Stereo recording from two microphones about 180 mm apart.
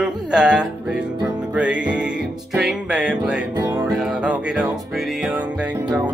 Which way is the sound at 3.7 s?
20° right (ahead or behind).